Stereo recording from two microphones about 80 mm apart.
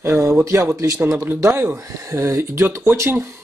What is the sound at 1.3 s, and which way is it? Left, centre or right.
Speech, right.